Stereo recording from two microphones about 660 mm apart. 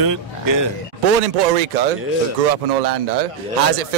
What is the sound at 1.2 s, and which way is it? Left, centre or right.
Speech, right.